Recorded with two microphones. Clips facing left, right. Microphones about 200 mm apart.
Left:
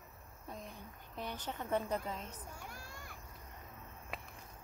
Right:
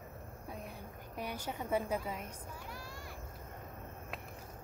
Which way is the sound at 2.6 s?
50° left (ahead or behind).